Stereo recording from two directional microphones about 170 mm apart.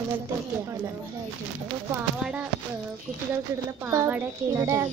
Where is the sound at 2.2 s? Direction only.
10° right (ahead or behind).